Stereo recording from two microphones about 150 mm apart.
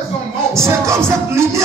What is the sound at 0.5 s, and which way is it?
Music, 20° right (ahead or behind).